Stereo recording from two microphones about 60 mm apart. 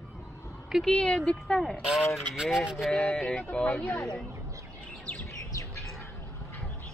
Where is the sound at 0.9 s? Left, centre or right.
Centre.